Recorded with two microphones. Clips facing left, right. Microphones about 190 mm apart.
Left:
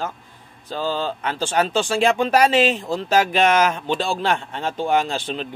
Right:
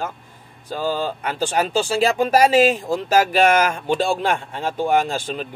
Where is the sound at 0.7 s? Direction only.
10° right (ahead or behind).